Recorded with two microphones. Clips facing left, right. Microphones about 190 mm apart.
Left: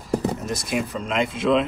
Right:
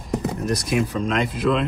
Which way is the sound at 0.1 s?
35° left (ahead or behind).